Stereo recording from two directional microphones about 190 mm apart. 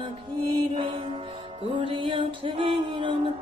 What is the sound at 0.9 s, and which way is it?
Music, 30° right (ahead or behind).